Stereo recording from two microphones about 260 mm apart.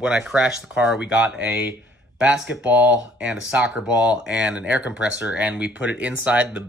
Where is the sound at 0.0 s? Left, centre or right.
Centre.